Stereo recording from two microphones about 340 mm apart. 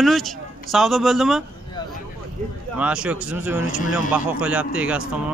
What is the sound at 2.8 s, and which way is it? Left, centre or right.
Speech, centre.